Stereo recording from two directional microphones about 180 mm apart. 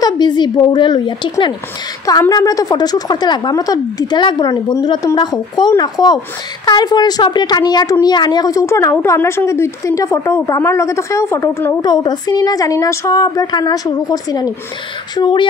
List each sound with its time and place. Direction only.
0.0 s a woman's voice: 25° left (ahead or behind)